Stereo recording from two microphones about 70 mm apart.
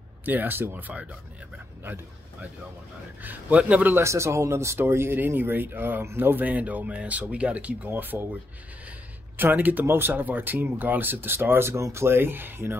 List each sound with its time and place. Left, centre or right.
0.2 s speech: right
3.2 s speech: right
3.9 s speech: right; by 7.9 s centre
7.9 s speech: right
9.4 s speech: right